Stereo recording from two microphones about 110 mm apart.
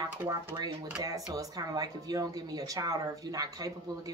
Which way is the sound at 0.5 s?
40° right (ahead or behind).